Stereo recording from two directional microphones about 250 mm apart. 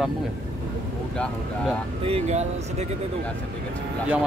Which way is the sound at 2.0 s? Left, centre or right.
Right.